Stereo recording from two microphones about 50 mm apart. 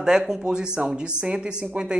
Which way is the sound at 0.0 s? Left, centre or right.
Centre.